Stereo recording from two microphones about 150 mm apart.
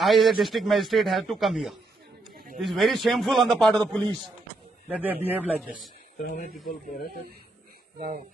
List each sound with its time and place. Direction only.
0.0 s a man's voice: centre (ahead or behind)
2.3 s a sound: 80° right
2.6 s a man's voice: centre (ahead or behind)
4.8 s speech: 10° right (ahead or behind)
6.2 s a man's voice: 80° left